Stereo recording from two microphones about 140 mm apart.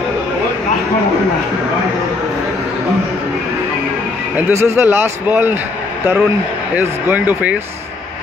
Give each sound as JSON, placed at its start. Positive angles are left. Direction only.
{"t": 4.4, "sound": "speech", "side_deg": -15}
{"t": 6.8, "sound": "speech", "side_deg": -15}